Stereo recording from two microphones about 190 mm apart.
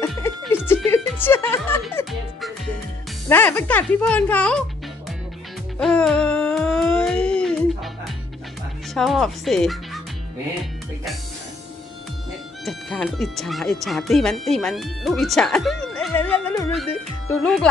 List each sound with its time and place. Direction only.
0.4 s music: 10° left (ahead or behind)
1.2 s speech: 10° left (ahead or behind)
3.3 s speech: 10° left (ahead or behind)
5.8 s music: centre (ahead or behind)
8.9 s speech: centre (ahead or behind)
12.6 s speech: 5° left (ahead or behind)